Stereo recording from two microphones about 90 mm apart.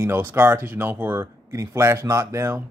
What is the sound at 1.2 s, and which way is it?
Speech, 35° right (ahead or behind).